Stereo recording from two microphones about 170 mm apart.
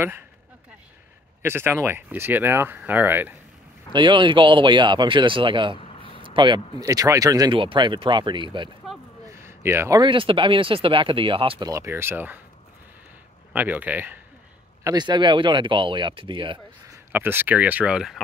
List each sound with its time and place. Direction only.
1.4 s speech: 15° right (ahead or behind)
3.9 s speech: 30° right (ahead or behind)
8.8 s a sound: centre (ahead or behind)
9.3 s a sound: 15° right (ahead or behind)
10.0 s speech: 30° right (ahead or behind)
11.7 s speech: 15° right (ahead or behind)
13.5 s speech: 10° right (ahead or behind)
14.8 s speech: 25° right (ahead or behind)
16.8 s speech: 15° right (ahead or behind)